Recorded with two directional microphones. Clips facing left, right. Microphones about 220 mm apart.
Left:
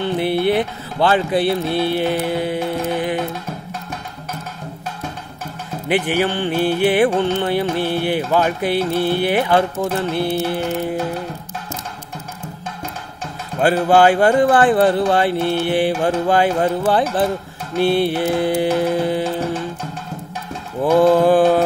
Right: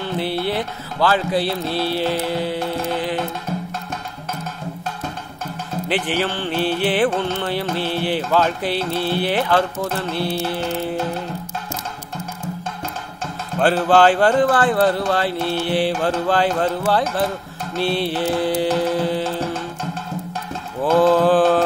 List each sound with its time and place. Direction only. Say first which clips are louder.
0.4 s music: left 6 dB; 20° left (ahead or behind)
1.4 s music: left 4 dB; 55° left (ahead or behind)
1.9 s music: left 2 dB; 15° left (ahead or behind)
5.9 s speech: left 4 dB; 10° left (ahead or behind)
10.2 s music: left 3 dB; 20° left (ahead or behind)
13.6 s speech: left 1 dB; 10° left (ahead or behind)
18.0 s speech: left 2 dB; 15° left (ahead or behind)
20.8 s speech: left 2 dB; 15° left (ahead or behind)